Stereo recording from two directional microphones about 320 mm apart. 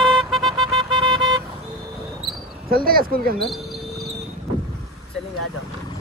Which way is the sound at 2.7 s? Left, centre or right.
Right.